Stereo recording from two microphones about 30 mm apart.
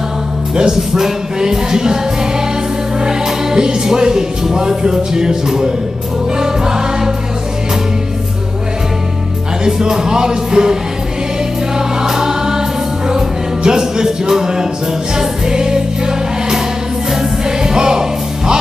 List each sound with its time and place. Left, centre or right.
0.6 s music: centre
3.0 s music: centre
9.7 s music: centre
12.0 s choir: centre
13.1 s music: right
17.6 s music: right